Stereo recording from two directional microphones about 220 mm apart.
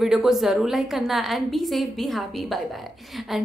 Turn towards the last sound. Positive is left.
turn(degrees=0)  # may be behind; listen again after turning